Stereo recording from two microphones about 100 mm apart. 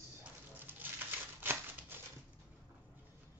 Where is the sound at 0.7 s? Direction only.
20° right (ahead or behind).